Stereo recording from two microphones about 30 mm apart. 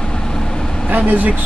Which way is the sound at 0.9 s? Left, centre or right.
Right.